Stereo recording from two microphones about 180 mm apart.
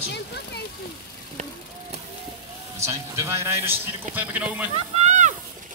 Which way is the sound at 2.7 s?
15° right (ahead or behind).